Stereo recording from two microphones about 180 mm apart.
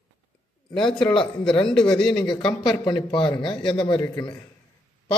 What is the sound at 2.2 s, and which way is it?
A man's voice, 25° left (ahead or behind).